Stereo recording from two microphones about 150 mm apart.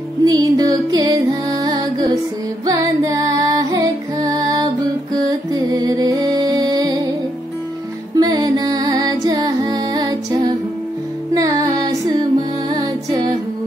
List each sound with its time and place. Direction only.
0.2 s music: 25° right (ahead or behind)
8.2 s music: 25° right (ahead or behind)